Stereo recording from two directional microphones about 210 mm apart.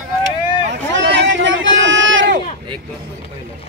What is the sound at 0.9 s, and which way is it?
Speech, 60° right (ahead or behind).